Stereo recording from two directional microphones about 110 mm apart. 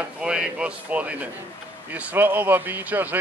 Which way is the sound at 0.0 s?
10° right (ahead or behind).